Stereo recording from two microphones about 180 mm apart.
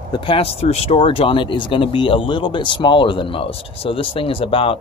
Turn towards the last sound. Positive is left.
turn(degrees=30)  # may be behind; listen again after turning